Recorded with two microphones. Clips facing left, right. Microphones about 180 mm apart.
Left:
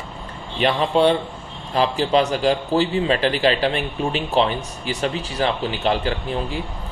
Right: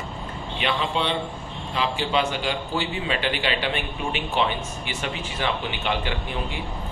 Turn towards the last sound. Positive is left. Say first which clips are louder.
# left 5 dB
turn(degrees=35)  # may be behind; listen again after turning